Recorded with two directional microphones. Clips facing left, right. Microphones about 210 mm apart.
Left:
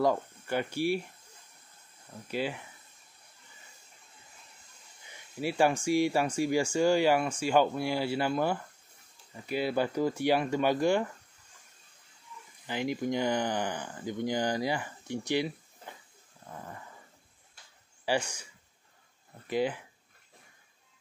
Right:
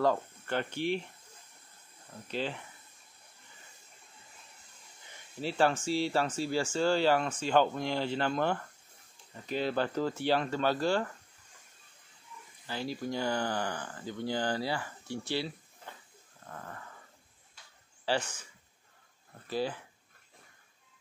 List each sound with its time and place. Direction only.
0.0 s speech: 10° left (ahead or behind)
2.3 s speech: 10° left (ahead or behind)
5.4 s speech: 10° left (ahead or behind)
12.6 s speech: 15° left (ahead or behind)
18.0 s speech: 10° left (ahead or behind)
19.5 s speech: 15° left (ahead or behind)